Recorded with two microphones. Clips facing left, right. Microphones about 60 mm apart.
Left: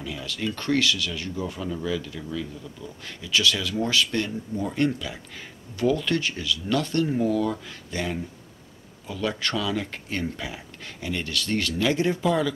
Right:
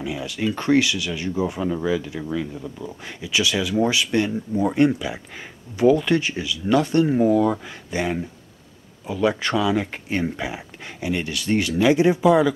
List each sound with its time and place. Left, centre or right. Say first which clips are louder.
0.0 s speech: right 5 dB; centre